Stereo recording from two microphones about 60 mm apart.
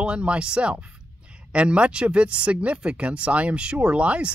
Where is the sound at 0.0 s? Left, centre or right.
Centre.